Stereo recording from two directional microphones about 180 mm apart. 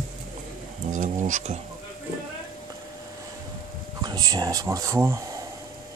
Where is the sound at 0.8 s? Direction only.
45° right (ahead or behind).